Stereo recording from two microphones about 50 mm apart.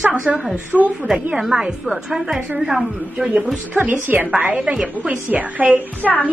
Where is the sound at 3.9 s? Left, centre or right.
Right.